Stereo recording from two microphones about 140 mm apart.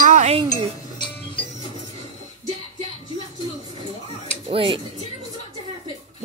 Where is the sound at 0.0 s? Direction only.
60° right (ahead or behind).